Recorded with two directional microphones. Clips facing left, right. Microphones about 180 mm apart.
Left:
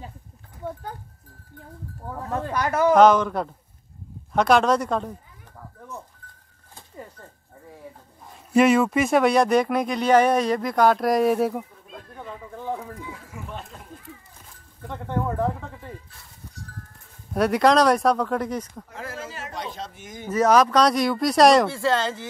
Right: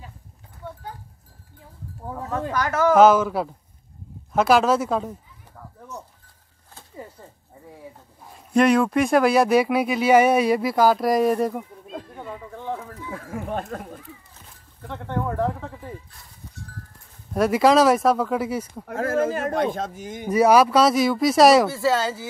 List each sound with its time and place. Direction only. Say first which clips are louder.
0.6 s livestock: left 5 dB; 40° left (ahead or behind)
2.5 s speech: even; 25° left (ahead or behind)
2.9 s speech: right 1 dB; 5° right (ahead or behind)
8.3 s speech: even; centre (ahead or behind)
12.2 s a sound: right 1 dB; 5° left (ahead or behind)
13.1 s a sound: right 8 dB; 55° right (ahead or behind)
14.9 s speech: even; 5° left (ahead or behind)
17.3 s speech: right 1 dB; centre (ahead or behind)
18.9 s a man's voice: right 13 dB; 50° right (ahead or behind)
20.2 s speech: right 2 dB; 10° right (ahead or behind)